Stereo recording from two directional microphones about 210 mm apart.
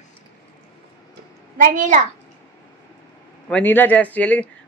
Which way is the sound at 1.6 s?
40° right (ahead or behind).